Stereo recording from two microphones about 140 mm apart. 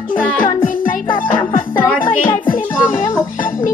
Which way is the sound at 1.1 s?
35° left (ahead or behind).